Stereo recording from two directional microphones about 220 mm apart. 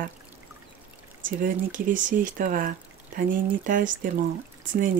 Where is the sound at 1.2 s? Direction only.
35° right (ahead or behind).